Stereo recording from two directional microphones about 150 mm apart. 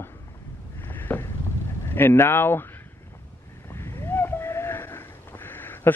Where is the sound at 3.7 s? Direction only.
15° left (ahead or behind).